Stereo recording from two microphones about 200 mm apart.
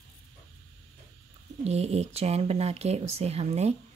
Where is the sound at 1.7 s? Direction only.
30° right (ahead or behind).